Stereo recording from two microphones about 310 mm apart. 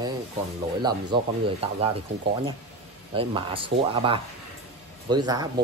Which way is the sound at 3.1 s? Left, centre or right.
Centre.